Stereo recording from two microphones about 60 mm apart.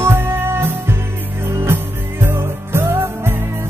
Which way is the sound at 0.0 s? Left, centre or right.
Right.